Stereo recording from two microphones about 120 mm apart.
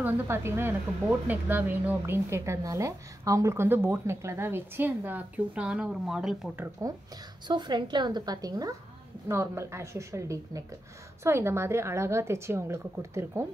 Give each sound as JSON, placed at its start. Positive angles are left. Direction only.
{"t": 0.0, "sound": "a woman's voice", "side_deg": -20}
{"t": 6.8, "sound": "a woman's voice", "side_deg": -25}
{"t": 7.4, "sound": "a woman's voice", "side_deg": -35}